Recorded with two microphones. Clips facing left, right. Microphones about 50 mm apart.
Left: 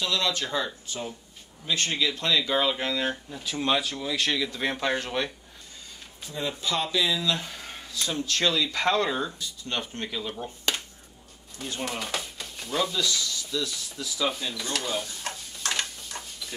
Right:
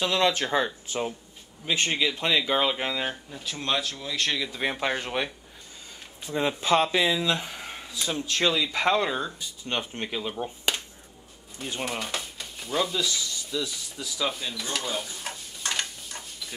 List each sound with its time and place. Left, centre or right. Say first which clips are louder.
0.0 s speech: right 4 dB; right
1.7 s speech: right 1 dB; right
3.1 s speech: left 2 dB; centre
6.3 s speech: right 6 dB; right
7.2 s speech: right 1 dB; right; by 9.3 s centre
9.4 s speech: right 1 dB; centre
11.5 s a sound: right 1 dB; centre